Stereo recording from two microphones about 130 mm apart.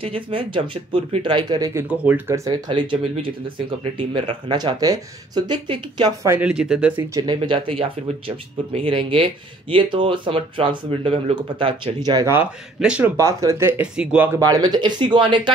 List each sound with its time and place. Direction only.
0.0 s speech: 45° right (ahead or behind)
1.8 s speech: 10° right (ahead or behind)
2.7 s speech: 40° right (ahead or behind)
6.2 s speech: 10° right (ahead or behind)
7.2 s speech: 35° right (ahead or behind)
12.4 s speech: 10° right (ahead or behind)
13.2 s speech: 25° right (ahead or behind)
14.4 s speech: 30° right (ahead or behind)